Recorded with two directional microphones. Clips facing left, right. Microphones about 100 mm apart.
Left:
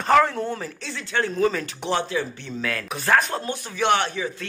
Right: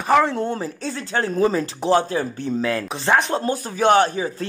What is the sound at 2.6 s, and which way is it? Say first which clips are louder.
Speech: right 2 dB; 25° right (ahead or behind).